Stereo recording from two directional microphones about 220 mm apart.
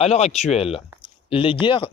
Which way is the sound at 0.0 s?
30° left (ahead or behind).